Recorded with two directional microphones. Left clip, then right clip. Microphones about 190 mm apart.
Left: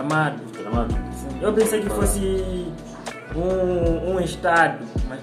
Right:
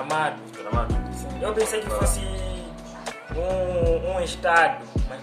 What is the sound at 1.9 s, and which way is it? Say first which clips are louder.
Music: left 2 dB; 25° right (ahead or behind).